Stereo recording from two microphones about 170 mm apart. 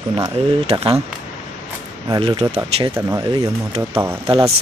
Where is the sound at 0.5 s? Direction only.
35° right (ahead or behind).